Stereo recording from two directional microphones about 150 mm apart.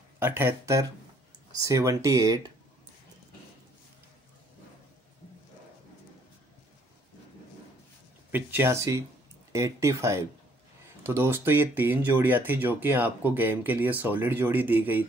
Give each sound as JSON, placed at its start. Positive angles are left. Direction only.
{"t": 0.2, "sound": "speech", "side_deg": -15}
{"t": 8.3, "sound": "speech", "side_deg": -15}